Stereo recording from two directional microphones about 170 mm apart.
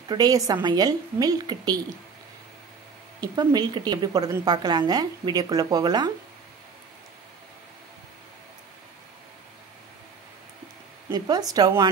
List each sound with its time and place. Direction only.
0.1 s a woman's voice: 25° right (ahead or behind)
3.2 s a woman's voice: 25° right (ahead or behind)
11.1 s a woman's voice: 25° right (ahead or behind)